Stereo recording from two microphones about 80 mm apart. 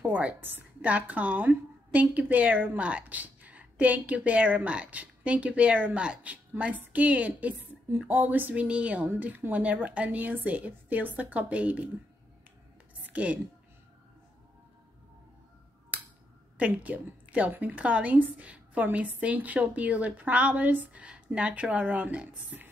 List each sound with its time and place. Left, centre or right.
0.0 s a woman's voice: centre
13.0 s a sound: centre
16.5 s a woman's voice: centre